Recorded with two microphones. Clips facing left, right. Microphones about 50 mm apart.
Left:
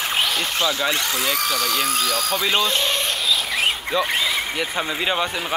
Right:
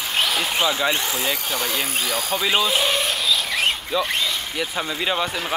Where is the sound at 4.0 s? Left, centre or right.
Centre.